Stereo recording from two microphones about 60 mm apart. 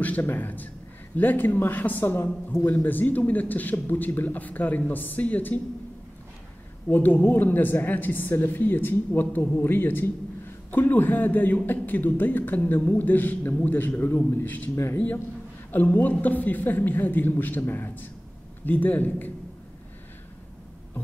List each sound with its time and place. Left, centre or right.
0.0 s a man's voice: left
6.9 s a man's voice: left
15.7 s a man's voice: left